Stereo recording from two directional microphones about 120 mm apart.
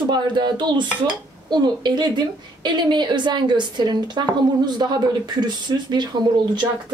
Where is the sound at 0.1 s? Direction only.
40° right (ahead or behind).